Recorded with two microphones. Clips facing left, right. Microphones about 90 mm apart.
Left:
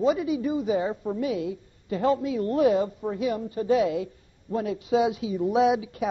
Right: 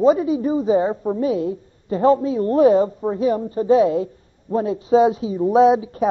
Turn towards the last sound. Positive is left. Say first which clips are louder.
# right 8 dB
turn(degrees=-35)  # may be behind; listen again after turning